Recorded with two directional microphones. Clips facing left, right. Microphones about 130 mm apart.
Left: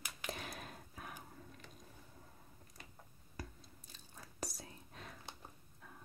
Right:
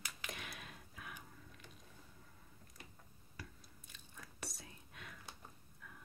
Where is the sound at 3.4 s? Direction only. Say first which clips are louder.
Left 4 dB; 35° left (ahead or behind).